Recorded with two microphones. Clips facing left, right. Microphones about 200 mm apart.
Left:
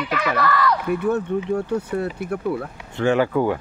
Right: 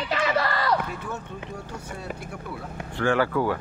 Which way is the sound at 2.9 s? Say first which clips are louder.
Left 4 dB; 20° left (ahead or behind).